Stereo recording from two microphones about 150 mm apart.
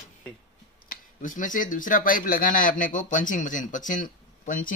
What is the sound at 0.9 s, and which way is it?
Speech, 60° left (ahead or behind).